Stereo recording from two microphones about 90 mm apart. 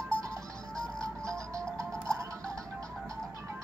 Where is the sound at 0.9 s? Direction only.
40° right (ahead or behind).